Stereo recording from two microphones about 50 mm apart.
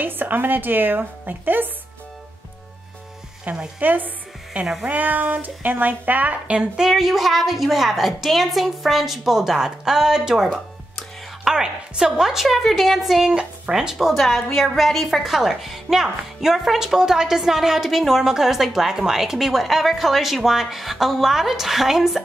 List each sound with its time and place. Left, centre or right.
0.0 s a woman's voice: right
3.5 s a woman's voice: right
6.4 s a woman's voice: right
6.8 s a woman's voice: centre
13.2 s a woman's voice: centre